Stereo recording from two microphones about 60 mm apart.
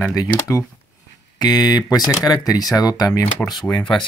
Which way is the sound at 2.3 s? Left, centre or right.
Left.